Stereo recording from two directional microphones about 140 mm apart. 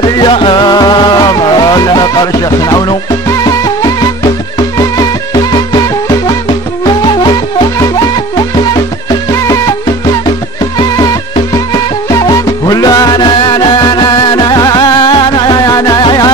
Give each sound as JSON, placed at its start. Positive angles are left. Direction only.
{"t": 0.2, "sound": "music", "side_deg": 35}
{"t": 9.3, "sound": "music", "side_deg": 25}
{"t": 11.7, "sound": "music", "side_deg": 25}